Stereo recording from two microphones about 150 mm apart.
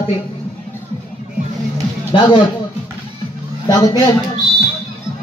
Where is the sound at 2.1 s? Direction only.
30° left (ahead or behind).